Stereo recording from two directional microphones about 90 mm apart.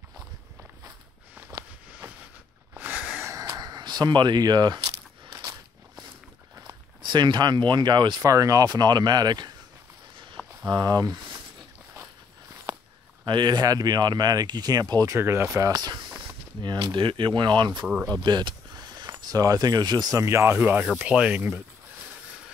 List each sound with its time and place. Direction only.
2.0 s a sound: 20° right (ahead or behind)
3.3 s a sound: 40° right (ahead or behind)
5.3 s biting: 50° right (ahead or behind)
7.0 s speech: 60° right (ahead or behind)
8.2 s speech: 40° right (ahead or behind)
10.4 s a sound: 5° left (ahead or behind)
10.7 s speech: 50° right (ahead or behind)
13.2 s speech: 55° right (ahead or behind)
15.1 s speech: 30° right (ahead or behind)
15.7 s speech: 50° right (ahead or behind)
18.2 s a sound: 55° right (ahead or behind)
19.2 s speech: 40° right (ahead or behind); by 21.4 s 15° right (ahead or behind)